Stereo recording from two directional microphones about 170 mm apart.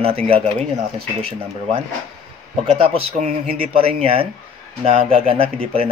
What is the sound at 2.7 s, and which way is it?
Speech, 35° right (ahead or behind).